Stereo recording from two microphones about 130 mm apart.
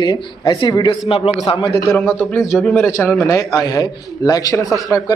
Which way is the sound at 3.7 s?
30° left (ahead or behind).